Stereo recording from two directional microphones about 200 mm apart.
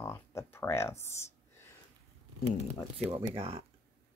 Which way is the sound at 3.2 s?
30° right (ahead or behind).